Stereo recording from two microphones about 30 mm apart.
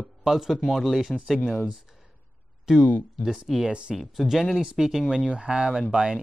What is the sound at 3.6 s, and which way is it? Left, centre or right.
Speech, right.